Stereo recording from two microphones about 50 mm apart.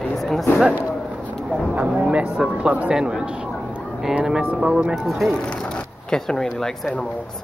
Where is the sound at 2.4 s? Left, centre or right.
Right.